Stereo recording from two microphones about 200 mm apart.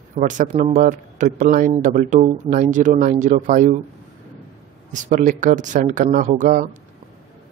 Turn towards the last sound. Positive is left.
turn(degrees=-40)  # may be behind; listen again after turning